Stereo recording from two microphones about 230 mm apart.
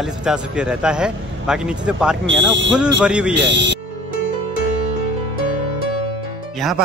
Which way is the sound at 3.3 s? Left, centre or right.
Right.